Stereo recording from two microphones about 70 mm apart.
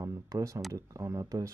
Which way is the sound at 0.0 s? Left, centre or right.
Right.